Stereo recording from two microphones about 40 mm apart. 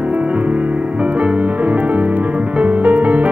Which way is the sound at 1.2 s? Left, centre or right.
Right.